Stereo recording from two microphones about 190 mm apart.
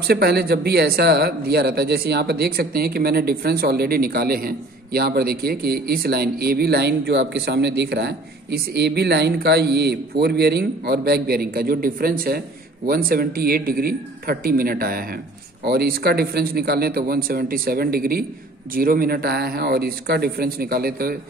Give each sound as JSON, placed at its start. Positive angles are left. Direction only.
{"t": 0.0, "sound": "a man's voice", "side_deg": -55}